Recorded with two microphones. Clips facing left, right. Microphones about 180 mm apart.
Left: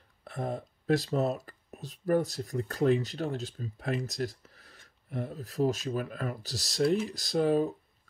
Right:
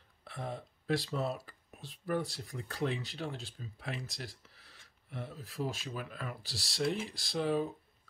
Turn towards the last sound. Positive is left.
turn(degrees=45)  # may be behind; listen again after turning